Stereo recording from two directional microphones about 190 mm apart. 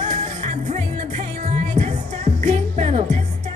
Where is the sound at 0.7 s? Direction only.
30° right (ahead or behind).